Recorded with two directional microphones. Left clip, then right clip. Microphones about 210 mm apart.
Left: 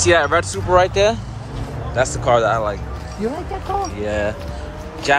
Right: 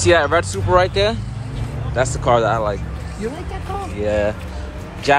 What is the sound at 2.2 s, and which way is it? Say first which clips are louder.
Speech: even; 5° left (ahead or behind).